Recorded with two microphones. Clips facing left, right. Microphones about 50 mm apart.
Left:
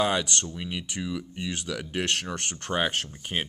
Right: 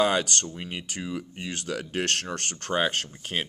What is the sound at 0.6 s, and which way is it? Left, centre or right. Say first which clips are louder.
Speech: left 1 dB; centre.